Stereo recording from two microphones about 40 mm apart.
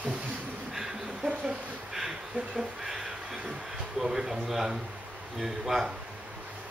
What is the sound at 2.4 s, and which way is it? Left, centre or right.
Speech, right.